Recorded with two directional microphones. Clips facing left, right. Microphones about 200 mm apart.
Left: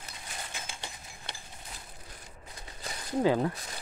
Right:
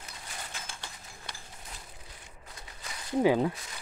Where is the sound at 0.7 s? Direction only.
15° left (ahead or behind).